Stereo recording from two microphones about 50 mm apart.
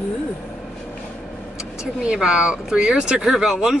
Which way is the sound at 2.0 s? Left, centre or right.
Centre.